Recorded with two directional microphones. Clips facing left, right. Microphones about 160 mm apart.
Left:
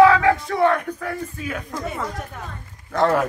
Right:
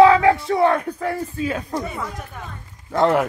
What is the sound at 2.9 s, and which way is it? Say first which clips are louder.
Speech: right 1 dB; 20° right (ahead or behind).